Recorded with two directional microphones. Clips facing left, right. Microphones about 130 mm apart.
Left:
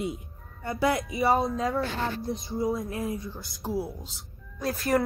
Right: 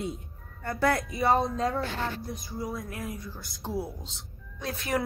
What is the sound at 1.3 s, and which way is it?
Speech, centre (ahead or behind).